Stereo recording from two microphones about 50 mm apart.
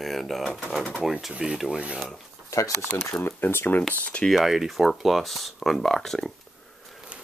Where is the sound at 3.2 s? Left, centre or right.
Left.